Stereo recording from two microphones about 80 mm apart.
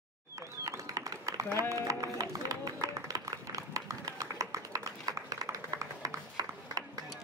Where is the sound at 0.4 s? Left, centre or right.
Right.